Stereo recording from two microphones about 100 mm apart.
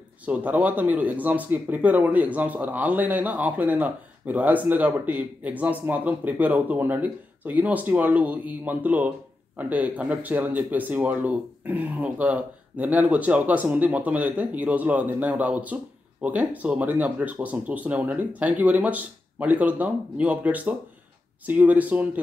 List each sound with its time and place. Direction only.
0.2 s speech: 15° right (ahead or behind)